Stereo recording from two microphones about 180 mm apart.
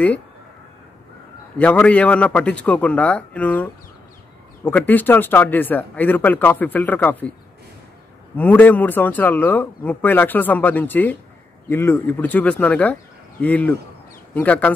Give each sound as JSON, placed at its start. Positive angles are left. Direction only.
{"t": 1.6, "sound": "speech", "side_deg": 5}
{"t": 8.4, "sound": "speech", "side_deg": 10}